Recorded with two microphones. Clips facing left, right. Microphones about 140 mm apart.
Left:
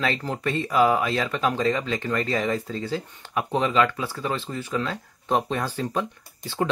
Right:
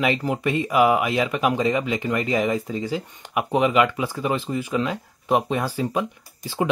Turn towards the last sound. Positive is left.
turn(degrees=-15)  # may be behind; listen again after turning